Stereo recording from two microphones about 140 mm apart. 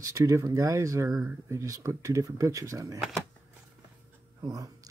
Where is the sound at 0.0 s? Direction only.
20° right (ahead or behind).